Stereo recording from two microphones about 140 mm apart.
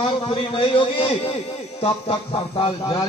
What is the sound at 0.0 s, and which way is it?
A man's voice, 35° left (ahead or behind).